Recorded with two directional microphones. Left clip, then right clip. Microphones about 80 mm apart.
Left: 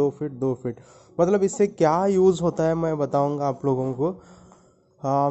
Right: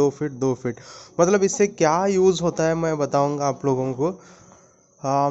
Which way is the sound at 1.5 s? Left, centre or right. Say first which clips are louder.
Right 1 dB; left.